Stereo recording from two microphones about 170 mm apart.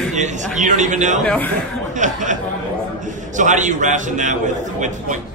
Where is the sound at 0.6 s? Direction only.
50° right (ahead or behind).